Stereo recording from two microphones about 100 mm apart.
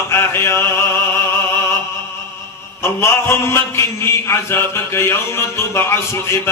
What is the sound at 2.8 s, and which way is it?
Mantra, 25° left (ahead or behind).